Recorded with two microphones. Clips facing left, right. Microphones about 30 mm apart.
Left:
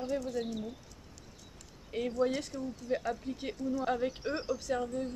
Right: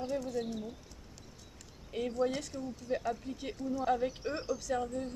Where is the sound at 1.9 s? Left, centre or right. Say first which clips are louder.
Left 2 dB; centre.